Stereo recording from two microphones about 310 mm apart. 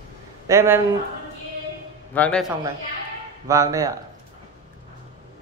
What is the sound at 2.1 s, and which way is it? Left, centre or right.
Speech, centre.